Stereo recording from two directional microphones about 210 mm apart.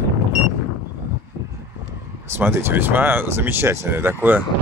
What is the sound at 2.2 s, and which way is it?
Speech, 10° right (ahead or behind).